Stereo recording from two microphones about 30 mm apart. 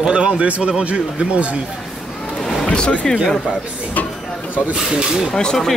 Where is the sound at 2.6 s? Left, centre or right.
Left.